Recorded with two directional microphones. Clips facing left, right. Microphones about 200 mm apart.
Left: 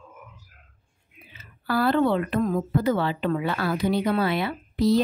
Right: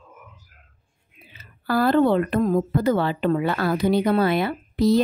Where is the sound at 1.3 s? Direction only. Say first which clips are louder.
Right 3 dB; 45° right (ahead or behind).